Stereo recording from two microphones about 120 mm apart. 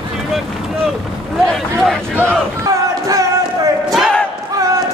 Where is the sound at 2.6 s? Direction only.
30° right (ahead or behind).